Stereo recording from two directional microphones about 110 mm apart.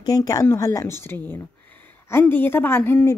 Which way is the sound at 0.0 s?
35° left (ahead or behind).